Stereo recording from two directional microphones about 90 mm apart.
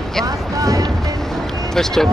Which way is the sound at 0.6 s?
40° right (ahead or behind).